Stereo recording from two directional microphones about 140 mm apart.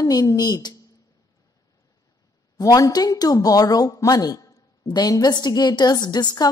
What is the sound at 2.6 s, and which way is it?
A woman's voice, 25° left (ahead or behind).